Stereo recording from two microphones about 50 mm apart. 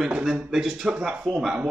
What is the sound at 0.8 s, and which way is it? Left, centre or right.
Speech, centre.